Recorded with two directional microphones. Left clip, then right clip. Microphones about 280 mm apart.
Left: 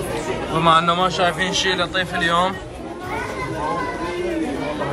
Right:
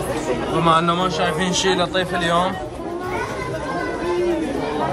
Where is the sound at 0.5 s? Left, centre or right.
Centre.